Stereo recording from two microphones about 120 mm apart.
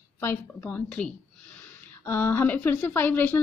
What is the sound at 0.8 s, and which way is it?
Speech, 5° left (ahead or behind).